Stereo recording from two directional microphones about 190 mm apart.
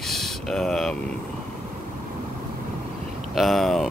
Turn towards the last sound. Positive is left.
turn(degrees=0)  # may be behind; listen again after turning